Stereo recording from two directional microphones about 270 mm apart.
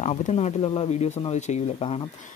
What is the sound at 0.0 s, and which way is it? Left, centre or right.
Speech, left.